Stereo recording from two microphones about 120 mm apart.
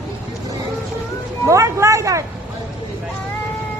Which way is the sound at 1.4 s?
25° right (ahead or behind).